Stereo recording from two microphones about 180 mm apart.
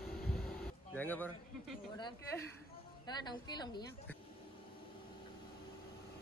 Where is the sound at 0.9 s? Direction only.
10° left (ahead or behind).